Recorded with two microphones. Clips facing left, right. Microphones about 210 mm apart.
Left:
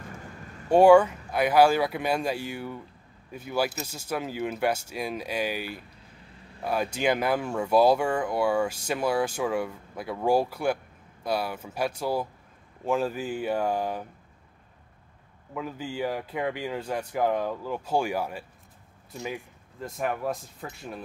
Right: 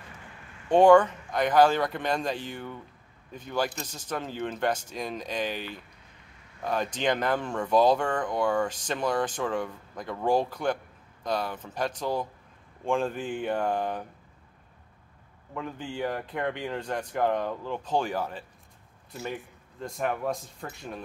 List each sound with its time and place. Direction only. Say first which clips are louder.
0.0 s vehicle: left 6 dB; 45° left (ahead or behind)
0.7 s speech: left 1 dB; 10° left (ahead or behind)
15.5 s speech: left 2 dB; 5° left (ahead or behind)